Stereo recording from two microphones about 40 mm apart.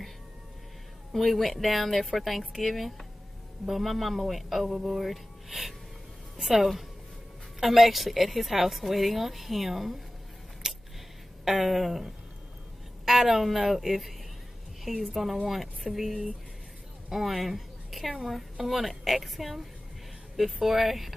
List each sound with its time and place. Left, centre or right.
1.1 s a woman's voice: centre
10.6 s a sound: centre
11.4 s a woman's voice: centre
20.6 s a woman's voice: centre